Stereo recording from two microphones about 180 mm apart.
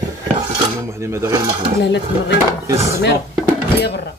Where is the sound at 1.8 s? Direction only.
75° left (ahead or behind).